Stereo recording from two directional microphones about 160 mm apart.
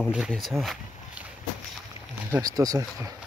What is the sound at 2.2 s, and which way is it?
Speech, 20° right (ahead or behind).